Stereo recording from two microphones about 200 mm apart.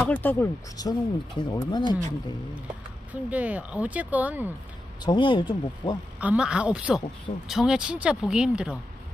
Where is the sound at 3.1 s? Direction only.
5° right (ahead or behind).